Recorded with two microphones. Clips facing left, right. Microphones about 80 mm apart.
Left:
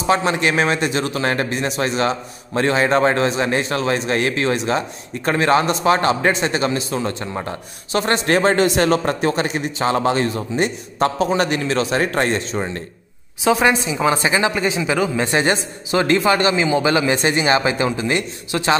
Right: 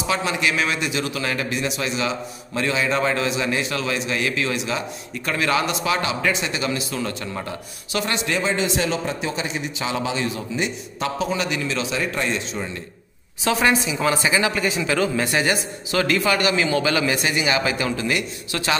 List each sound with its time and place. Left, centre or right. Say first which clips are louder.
0.0 s a man's voice: left 5 dB; left
13.4 s a woman's voice: left 4 dB; centre